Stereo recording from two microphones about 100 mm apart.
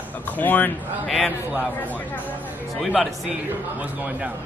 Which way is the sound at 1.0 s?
Centre (ahead or behind).